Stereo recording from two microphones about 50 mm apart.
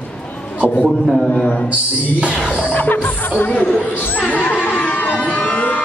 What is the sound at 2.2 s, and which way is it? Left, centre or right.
Speech, right.